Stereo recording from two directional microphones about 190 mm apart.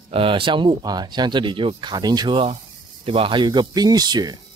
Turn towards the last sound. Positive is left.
turn(degrees=-20)  # may be behind; listen again after turning